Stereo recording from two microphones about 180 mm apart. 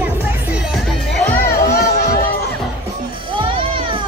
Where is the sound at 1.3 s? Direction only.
60° left (ahead or behind).